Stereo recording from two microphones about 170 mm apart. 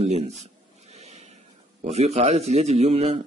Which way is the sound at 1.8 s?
40° right (ahead or behind).